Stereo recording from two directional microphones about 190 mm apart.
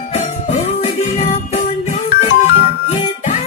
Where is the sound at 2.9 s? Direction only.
35° left (ahead or behind).